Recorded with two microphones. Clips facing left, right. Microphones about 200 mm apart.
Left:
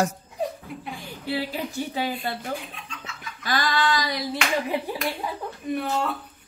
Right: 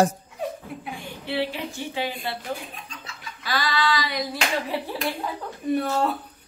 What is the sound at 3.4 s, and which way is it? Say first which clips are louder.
Female singing: left 1 dB; 45° left (ahead or behind).